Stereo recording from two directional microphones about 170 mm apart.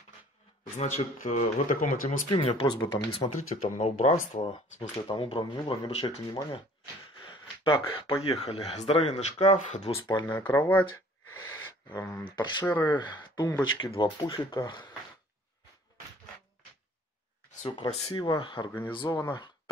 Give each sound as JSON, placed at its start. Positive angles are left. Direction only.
{"t": 0.7, "sound": "speech", "side_deg": 40}
{"t": 2.2, "sound": "speech", "side_deg": 25}
{"t": 3.3, "sound": "speech", "side_deg": 45}
{"t": 7.6, "sound": "speech", "side_deg": 35}
{"t": 9.9, "sound": "speech", "side_deg": 25}
{"t": 10.2, "sound": "speech", "side_deg": 10}
{"t": 11.5, "sound": "speech", "side_deg": 20}
{"t": 12.6, "sound": "speech", "side_deg": 10}
{"t": 12.9, "sound": "speech", "side_deg": 25}
{"t": 17.6, "sound": "speech", "side_deg": 30}